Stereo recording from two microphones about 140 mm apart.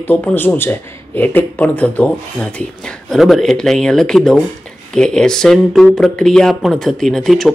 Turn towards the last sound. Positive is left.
turn(degrees=0)  # may be behind; listen again after turning